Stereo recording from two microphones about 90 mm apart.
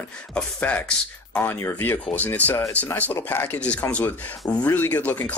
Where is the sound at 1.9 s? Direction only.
15° left (ahead or behind).